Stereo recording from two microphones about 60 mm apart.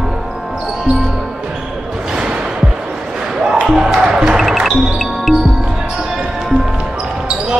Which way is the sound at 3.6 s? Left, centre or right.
Centre.